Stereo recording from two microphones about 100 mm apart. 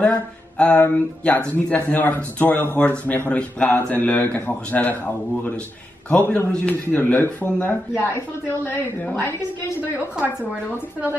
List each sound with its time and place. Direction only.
0.6 s speech: 15° left (ahead or behind)
9.0 s a woman's voice: 20° left (ahead or behind)
9.8 s a woman's voice: 20° right (ahead or behind)